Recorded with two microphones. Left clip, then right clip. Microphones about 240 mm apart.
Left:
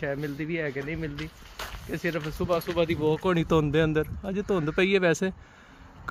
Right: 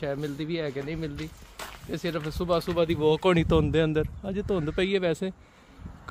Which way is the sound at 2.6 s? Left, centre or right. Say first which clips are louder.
Right 1 dB; right.